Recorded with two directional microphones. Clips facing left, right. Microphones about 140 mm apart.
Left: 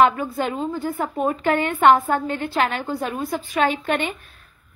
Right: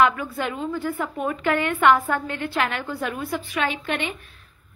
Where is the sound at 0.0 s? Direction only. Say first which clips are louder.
Left 3 dB; 35° left (ahead or behind).